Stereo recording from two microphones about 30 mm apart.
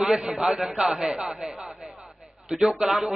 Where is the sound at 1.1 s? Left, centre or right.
Right.